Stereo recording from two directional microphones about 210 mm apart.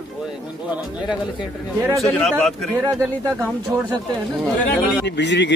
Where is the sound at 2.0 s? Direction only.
Centre (ahead or behind).